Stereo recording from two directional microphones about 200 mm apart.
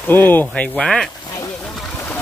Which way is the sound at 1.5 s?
Centre (ahead or behind).